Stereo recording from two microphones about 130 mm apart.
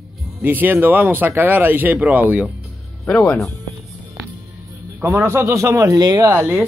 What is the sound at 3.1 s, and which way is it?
Speech, 10° left (ahead or behind).